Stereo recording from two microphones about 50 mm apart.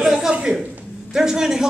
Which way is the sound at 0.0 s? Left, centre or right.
Centre.